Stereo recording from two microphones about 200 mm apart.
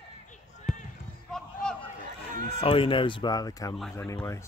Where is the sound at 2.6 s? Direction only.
25° left (ahead or behind); by 4.4 s 10° left (ahead or behind).